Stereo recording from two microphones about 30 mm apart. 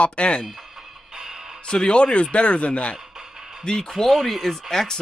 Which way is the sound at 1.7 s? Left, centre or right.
Left.